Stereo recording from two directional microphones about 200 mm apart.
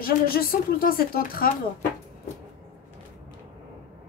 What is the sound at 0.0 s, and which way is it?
Speech, 50° left (ahead or behind).